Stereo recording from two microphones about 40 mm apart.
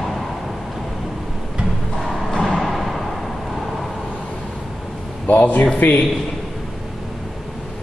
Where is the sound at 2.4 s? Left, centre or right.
Centre.